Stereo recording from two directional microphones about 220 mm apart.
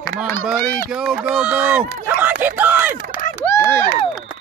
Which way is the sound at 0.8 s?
5° right (ahead or behind).